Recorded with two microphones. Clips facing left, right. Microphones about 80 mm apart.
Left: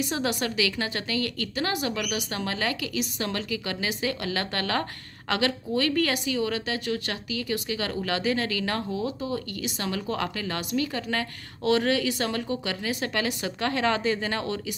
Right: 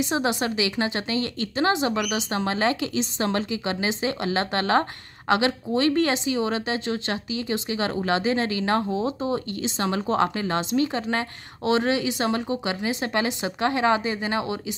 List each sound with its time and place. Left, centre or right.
0.0 s speech: right